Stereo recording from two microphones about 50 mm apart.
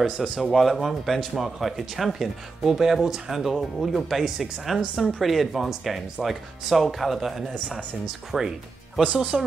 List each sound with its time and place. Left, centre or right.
0.0 s speech: centre
9.0 s speech: right